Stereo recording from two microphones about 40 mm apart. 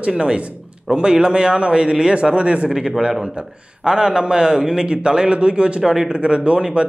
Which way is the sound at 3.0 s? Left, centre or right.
Centre.